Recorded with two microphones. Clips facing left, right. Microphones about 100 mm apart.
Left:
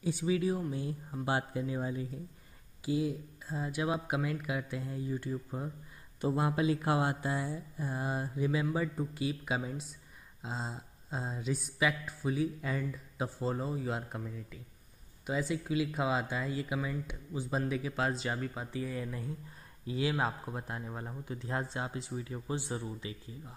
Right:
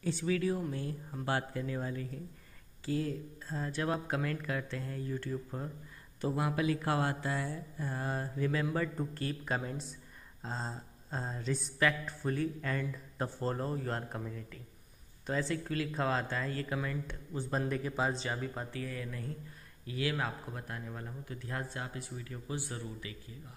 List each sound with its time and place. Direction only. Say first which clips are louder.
0.0 s speech: left 1 dB; 15° left (ahead or behind)
6.2 s speech: left 2 dB; 25° left (ahead or behind); by 9.9 s 5° left (ahead or behind)
10.4 s a sound: even; 5° left (ahead or behind)
15.2 s speech: left 1 dB; 10° left (ahead or behind)
18.7 s speech: left 3 dB; 15° left (ahead or behind)